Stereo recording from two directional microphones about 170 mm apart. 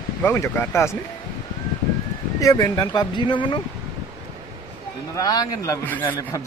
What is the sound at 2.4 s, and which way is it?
A man's voice, 20° left (ahead or behind).